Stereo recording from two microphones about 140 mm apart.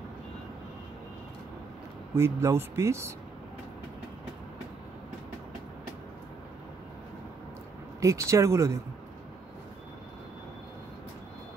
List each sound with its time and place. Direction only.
2.1 s speech: 20° right (ahead or behind)
8.0 s speech: 20° right (ahead or behind)